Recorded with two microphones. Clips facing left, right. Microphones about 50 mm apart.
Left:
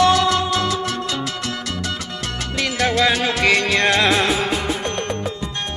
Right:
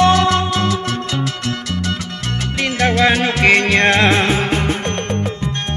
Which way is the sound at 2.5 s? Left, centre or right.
Right.